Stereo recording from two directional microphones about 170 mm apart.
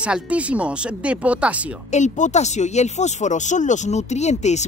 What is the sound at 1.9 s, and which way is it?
Speech, 45° left (ahead or behind).